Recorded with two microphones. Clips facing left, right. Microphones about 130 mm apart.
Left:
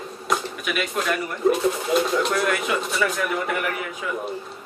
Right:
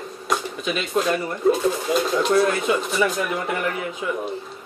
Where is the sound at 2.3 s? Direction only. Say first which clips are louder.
Right 4 dB; 30° right (ahead or behind).